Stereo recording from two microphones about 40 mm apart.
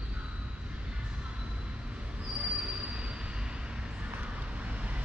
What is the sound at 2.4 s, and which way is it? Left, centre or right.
Train wheels squealing, right.